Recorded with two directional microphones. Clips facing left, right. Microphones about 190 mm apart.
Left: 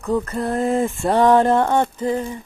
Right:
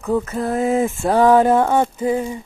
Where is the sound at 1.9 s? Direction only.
10° right (ahead or behind).